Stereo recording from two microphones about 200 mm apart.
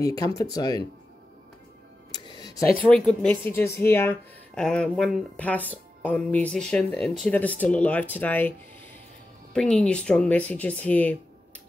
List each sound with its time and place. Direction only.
0.0 s speech: 15° left (ahead or behind)
2.1 s music: 20° left (ahead or behind)
2.8 s speech: 5° left (ahead or behind)